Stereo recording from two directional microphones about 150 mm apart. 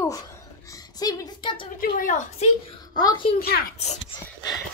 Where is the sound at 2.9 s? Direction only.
30° left (ahead or behind).